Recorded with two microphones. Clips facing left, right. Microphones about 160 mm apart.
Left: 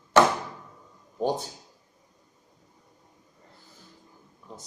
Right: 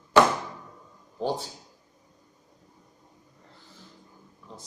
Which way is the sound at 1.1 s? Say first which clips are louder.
Left 2 dB; 15° left (ahead or behind).